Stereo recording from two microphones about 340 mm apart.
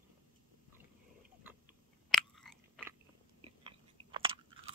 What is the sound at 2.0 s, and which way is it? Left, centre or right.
Chewing, centre.